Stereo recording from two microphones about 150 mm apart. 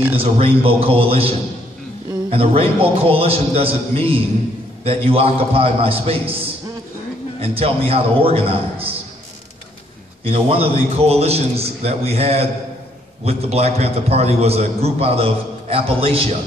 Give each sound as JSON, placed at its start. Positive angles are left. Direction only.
{"t": 0.1, "sound": "a man's voice", "side_deg": -40}
{"t": 7.4, "sound": "a man's voice", "side_deg": -40}
{"t": 10.2, "sound": "a man's voice", "side_deg": -40}